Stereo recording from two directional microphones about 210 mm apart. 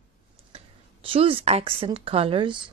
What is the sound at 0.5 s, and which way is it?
Speech, 25° right (ahead or behind).